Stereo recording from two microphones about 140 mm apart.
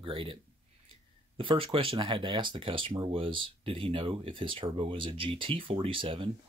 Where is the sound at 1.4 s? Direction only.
40° right (ahead or behind).